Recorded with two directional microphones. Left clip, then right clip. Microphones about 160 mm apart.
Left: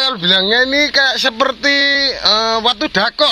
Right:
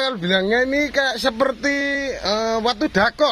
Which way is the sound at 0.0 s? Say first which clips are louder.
Left 7 dB; 5° right (ahead or behind).